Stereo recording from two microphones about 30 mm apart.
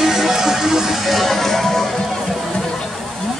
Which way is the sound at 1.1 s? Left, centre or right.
Centre.